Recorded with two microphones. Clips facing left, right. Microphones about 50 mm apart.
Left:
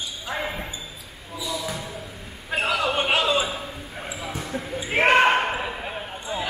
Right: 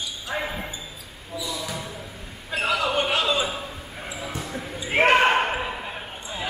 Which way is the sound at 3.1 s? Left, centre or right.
Centre.